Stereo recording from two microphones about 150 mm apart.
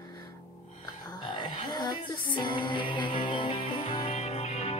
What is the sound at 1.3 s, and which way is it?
Music, 30° left (ahead or behind).